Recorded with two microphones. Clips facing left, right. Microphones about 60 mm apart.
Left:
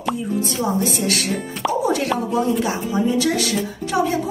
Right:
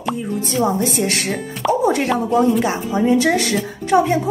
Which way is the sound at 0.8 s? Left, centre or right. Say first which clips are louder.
Right 2 dB; right.